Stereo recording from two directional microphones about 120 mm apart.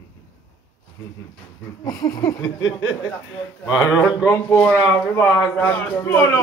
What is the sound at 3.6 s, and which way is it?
Speech, 25° left (ahead or behind).